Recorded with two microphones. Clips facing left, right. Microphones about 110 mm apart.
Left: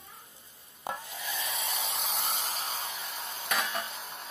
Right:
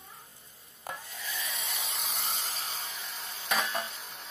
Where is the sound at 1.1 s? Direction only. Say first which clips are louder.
Left 3 dB; 15° left (ahead or behind).